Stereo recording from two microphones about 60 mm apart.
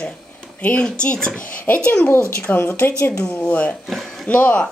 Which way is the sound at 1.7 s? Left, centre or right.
Left.